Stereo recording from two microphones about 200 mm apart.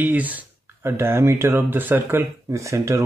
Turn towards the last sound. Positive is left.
turn(degrees=-15)  # may be behind; listen again after turning